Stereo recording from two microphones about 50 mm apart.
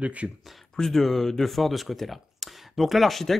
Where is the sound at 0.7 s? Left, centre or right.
Centre.